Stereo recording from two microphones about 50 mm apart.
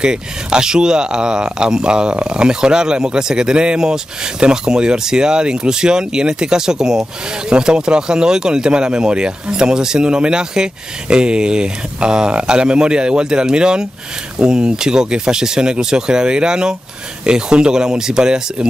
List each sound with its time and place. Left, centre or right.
0.0 s speech: centre